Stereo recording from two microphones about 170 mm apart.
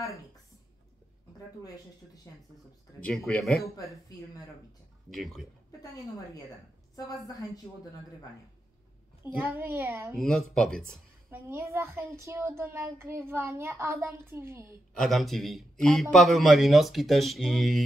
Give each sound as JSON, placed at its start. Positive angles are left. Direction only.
{"t": 3.0, "sound": "a man's voice", "side_deg": 5}
{"t": 5.1, "sound": "a man's voice", "side_deg": 0}
{"t": 7.1, "sound": "a woman's voice", "side_deg": 20}
{"t": 9.2, "sound": "a child's voice", "side_deg": -10}
{"t": 10.1, "sound": "a man's voice", "side_deg": 5}
{"t": 11.2, "sound": "a child's voice", "side_deg": -15}
{"t": 15.0, "sound": "a man's voice", "side_deg": 0}